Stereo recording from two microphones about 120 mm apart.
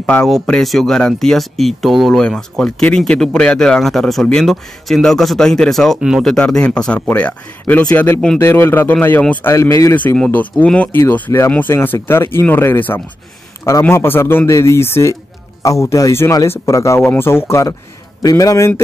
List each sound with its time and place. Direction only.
0.0 s speech: 10° left (ahead or behind); by 9.9 s 25° left (ahead or behind)
9.9 s speech: 10° left (ahead or behind); by 18.7 s 25° left (ahead or behind)